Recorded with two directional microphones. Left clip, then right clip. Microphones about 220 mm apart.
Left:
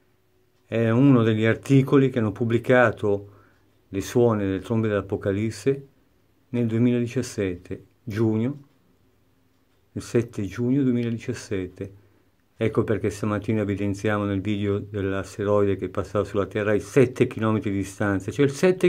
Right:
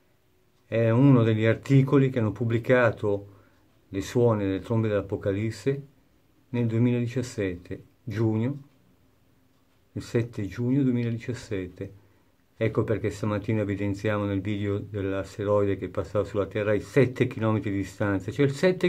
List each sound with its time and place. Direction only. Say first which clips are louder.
0.7 s speech: left 2 dB; 15° left (ahead or behind)
9.9 s speech: left 4 dB; 15° left (ahead or behind)